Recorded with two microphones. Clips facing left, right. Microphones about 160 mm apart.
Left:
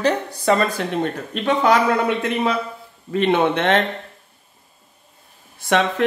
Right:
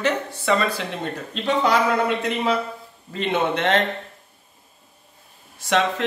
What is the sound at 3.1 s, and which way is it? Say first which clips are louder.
Speech: left 5 dB; 60° left (ahead or behind).